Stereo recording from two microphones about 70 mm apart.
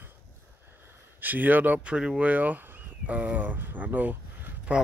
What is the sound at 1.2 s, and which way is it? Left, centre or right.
Speech, right.